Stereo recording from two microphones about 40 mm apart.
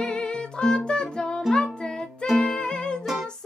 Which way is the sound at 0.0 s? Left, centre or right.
Left.